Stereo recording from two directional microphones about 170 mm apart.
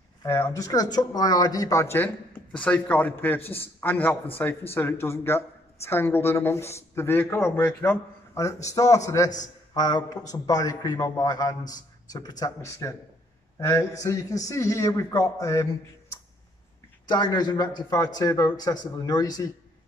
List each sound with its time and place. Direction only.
0.2 s a man's voice: 15° left (ahead or behind)
17.1 s a man's voice: 25° left (ahead or behind)